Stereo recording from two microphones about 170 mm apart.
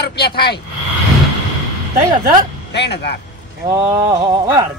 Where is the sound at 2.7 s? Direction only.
80° left.